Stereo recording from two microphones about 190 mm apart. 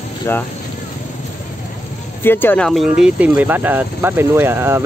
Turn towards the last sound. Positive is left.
turn(degrees=-10)  # may be behind; listen again after turning